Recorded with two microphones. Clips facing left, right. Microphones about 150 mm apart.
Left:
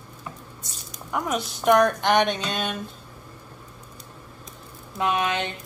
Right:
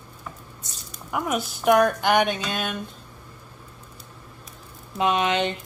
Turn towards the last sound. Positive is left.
turn(degrees=-20)  # may be behind; listen again after turning